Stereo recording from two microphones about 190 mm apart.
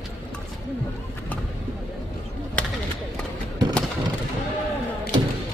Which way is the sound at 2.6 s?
5° left (ahead or behind).